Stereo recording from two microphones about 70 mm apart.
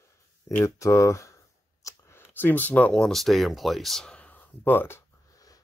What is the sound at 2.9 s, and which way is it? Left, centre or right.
Speech, centre.